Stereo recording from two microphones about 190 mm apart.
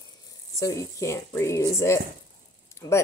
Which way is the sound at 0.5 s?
15° left (ahead or behind).